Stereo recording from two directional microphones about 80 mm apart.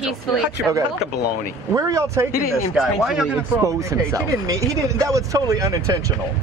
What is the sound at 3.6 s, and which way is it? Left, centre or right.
Speech, right.